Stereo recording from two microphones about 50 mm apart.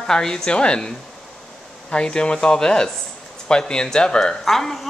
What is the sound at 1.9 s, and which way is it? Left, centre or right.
Speech, centre.